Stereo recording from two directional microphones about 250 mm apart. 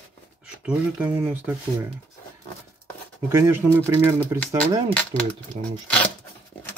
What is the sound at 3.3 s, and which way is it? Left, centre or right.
Speech, centre.